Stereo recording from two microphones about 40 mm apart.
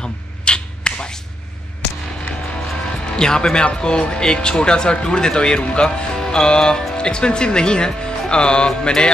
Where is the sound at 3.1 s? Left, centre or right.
Centre.